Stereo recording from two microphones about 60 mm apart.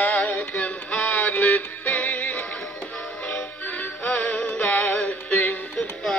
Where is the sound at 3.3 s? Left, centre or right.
Left.